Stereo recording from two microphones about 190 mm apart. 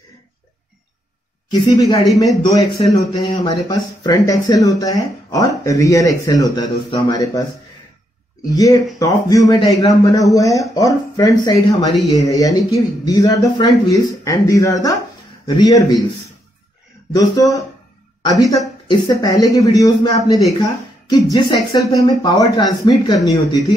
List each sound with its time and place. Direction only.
1.5 s speech: 20° left (ahead or behind)
8.5 s speech: 20° left (ahead or behind)
17.1 s speech: 20° left (ahead or behind)